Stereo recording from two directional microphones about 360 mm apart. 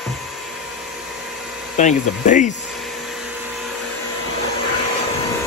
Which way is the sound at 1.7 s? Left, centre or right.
Left.